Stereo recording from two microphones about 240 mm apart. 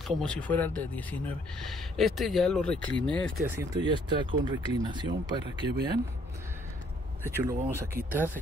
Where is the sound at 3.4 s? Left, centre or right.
Centre.